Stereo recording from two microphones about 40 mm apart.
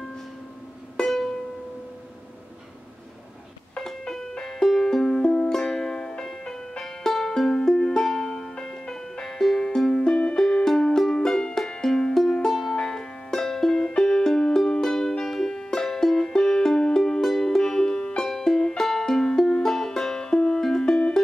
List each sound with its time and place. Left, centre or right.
0.9 s music: centre
3.7 s music: centre
12.7 s music: centre